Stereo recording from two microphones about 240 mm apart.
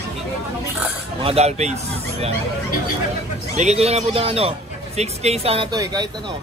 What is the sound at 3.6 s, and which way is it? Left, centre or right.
Speech, right.